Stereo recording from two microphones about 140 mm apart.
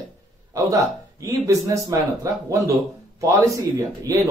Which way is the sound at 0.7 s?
20° right (ahead or behind).